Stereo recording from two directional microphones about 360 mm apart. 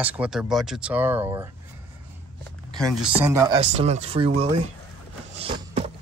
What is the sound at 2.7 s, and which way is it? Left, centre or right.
Speech, centre.